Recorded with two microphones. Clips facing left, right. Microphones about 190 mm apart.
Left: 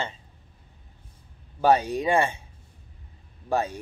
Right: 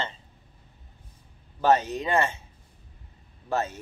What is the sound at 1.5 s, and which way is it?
Speech, 10° left (ahead or behind).